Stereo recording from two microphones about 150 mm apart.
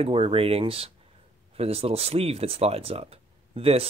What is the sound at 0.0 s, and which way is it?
Speech, 40° right (ahead or behind).